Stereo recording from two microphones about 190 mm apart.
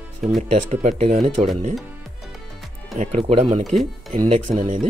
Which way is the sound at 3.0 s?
35° right (ahead or behind).